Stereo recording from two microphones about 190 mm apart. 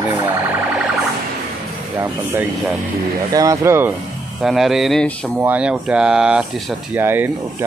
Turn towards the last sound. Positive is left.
turn(degrees=-10)  # may be behind; listen again after turning